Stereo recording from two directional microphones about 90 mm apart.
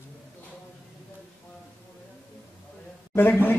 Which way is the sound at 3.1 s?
20° left (ahead or behind).